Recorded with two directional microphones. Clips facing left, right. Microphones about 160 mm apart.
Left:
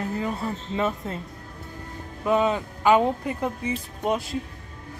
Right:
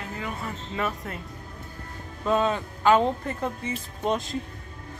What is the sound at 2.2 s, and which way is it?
Speech, 15° left (ahead or behind).